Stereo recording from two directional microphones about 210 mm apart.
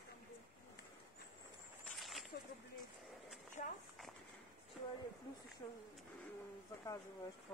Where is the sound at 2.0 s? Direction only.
Centre (ahead or behind).